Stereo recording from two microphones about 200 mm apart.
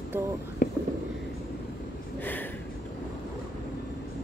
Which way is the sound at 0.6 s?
45° left (ahead or behind).